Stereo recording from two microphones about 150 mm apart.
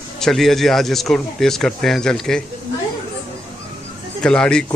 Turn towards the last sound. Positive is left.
turn(degrees=5)  # may be behind; listen again after turning